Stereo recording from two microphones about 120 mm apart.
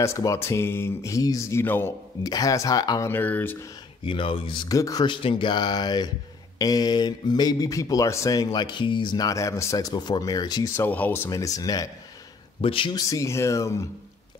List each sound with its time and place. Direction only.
0.0 s speech: 25° left (ahead or behind)
2.2 s speech: 30° left (ahead or behind)
3.1 s speech: 15° left (ahead or behind)
4.0 s speech: 45° left (ahead or behind)
4.6 s speech: 30° left (ahead or behind)
5.0 s speech: 45° left (ahead or behind)
10.7 s speech: 15° left (ahead or behind)
11.2 s speech: 30° left (ahead or behind)
12.6 s speech: 50° left (ahead or behind)
12.9 s speech: 30° left (ahead or behind)